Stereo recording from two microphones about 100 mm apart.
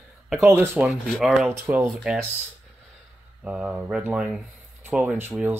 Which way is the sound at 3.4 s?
10° right (ahead or behind).